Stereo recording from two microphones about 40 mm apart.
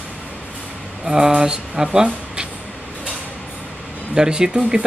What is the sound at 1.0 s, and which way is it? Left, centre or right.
Speech, centre.